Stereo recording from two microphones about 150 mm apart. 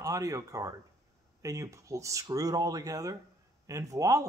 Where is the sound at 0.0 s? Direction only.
20° right (ahead or behind).